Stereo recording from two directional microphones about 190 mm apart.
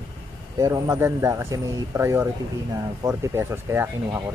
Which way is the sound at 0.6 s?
20° right (ahead or behind).